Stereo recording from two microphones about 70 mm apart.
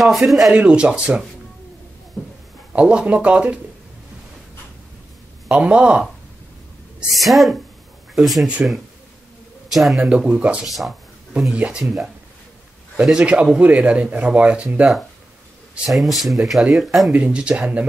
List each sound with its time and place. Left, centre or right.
0.0 s speech: centre
0.5 s speech: centre
2.2 s a sound: centre
2.7 s speech: centre
5.5 s speech: centre
7.2 s speech: centre
9.8 s speech: centre
10.0 s speech: centre
10.6 s speech: centre
13.2 s speech: centre
15.9 s speech: centre
17.1 s speech: centre